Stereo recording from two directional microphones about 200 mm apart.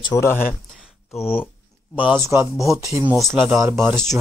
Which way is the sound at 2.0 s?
10° right (ahead or behind).